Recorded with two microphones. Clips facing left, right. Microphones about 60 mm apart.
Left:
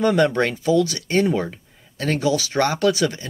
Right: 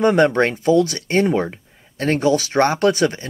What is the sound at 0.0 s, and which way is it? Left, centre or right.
Speech, right.